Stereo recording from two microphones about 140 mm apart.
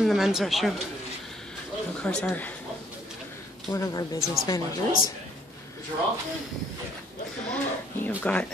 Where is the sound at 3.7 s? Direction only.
25° left (ahead or behind).